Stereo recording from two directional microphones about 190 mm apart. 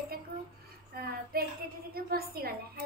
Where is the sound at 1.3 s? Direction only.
50° right (ahead or behind).